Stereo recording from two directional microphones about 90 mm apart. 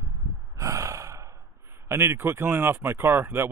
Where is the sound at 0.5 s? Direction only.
35° right (ahead or behind).